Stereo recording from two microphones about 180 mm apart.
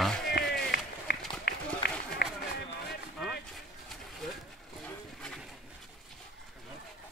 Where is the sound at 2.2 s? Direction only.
65° left (ahead or behind).